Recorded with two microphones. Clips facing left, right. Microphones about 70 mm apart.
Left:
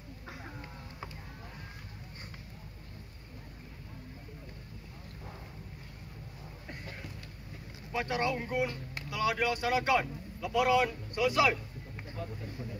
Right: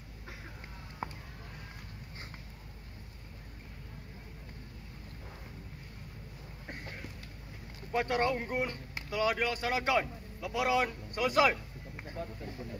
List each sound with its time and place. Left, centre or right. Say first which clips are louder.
7.9 s speech: right 2 dB; right; by 10.8 s centre
11.1 s speech: even; right